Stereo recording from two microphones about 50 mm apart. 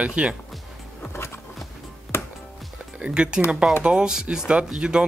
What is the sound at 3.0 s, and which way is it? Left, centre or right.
Speech, right.